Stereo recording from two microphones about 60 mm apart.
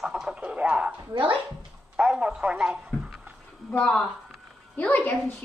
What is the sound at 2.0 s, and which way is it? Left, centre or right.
Speech, centre.